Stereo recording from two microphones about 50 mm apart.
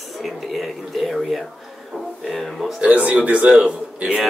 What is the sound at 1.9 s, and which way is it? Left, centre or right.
Music, centre.